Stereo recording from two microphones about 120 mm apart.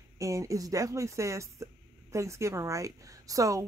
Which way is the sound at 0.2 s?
25° right (ahead or behind).